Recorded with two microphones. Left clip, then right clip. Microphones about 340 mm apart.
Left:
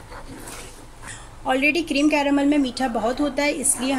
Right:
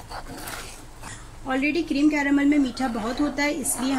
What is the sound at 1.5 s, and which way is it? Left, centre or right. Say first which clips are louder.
Speech: left 5 dB; left.